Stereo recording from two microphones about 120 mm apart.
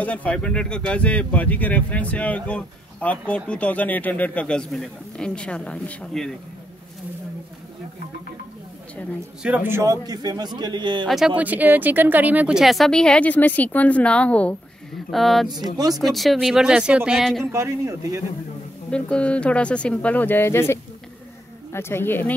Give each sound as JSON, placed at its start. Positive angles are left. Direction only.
{"t": 0.0, "sound": "speech", "side_deg": 10}
{"t": 9.4, "sound": "a man's voice", "side_deg": -15}
{"t": 10.0, "sound": "speech", "side_deg": -35}
{"t": 11.1, "sound": "a woman's voice", "side_deg": -5}
{"t": 11.3, "sound": "a woman's voice", "side_deg": -15}
{"t": 17.2, "sound": "a woman's voice", "side_deg": 5}
{"t": 17.5, "sound": "speech", "side_deg": -25}
{"t": 18.9, "sound": "a woman's voice", "side_deg": 10}